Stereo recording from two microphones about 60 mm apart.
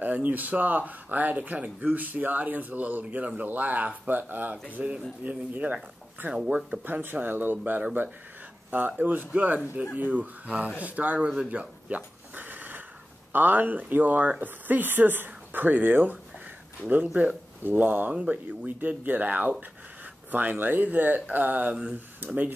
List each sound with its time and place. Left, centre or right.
0.0 s speech: right
6.9 s speech: right
10.8 s a sound: right
13.3 s speech: right